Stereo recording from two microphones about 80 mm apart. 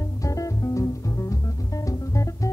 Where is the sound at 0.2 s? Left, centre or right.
Left.